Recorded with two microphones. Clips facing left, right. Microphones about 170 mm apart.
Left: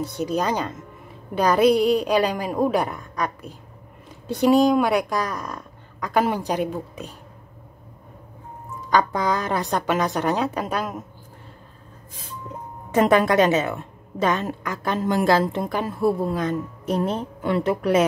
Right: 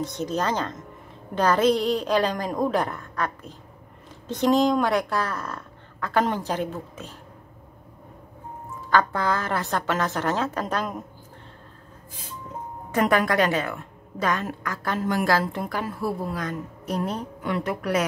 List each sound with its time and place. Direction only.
0.0 s speech: 10° left (ahead or behind)
8.9 s speech: 15° left (ahead or behind)
12.9 s a woman's voice: 25° left (ahead or behind)